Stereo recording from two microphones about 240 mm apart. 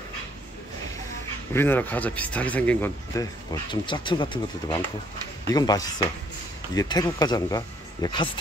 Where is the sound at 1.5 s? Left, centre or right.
Centre.